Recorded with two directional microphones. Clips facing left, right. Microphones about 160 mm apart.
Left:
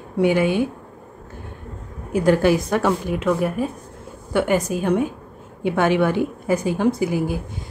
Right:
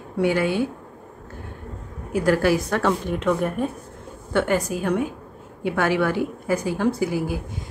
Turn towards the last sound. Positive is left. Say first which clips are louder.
# left 2 dB
turn(degrees=20)  # may be behind; listen again after turning